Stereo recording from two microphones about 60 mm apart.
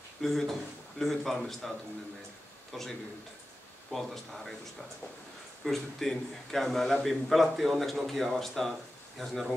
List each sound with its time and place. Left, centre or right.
0.2 s a man's voice: centre
2.7 s a man's voice: centre
3.9 s a man's voice: centre
5.7 s a man's voice: centre